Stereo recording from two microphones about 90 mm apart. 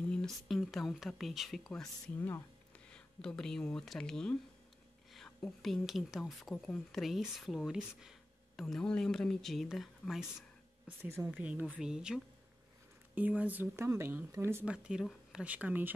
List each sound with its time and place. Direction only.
0.1 s speech: 5° left (ahead or behind)
2.1 s speech: 25° left (ahead or behind)
2.9 s speech: 5° left (ahead or behind)
11.2 s speech: 15° right (ahead or behind)
14.6 s speech: 10° right (ahead or behind)